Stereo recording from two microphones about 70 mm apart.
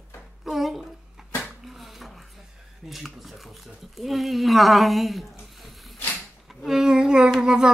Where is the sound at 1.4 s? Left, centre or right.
Centre.